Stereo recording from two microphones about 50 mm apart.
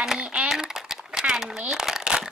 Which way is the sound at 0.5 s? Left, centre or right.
Centre.